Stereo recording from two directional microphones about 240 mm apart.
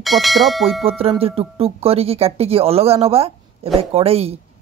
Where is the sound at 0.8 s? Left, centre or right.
Right.